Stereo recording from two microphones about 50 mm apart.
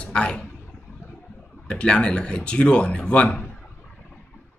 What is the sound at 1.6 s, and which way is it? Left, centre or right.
Speech, centre.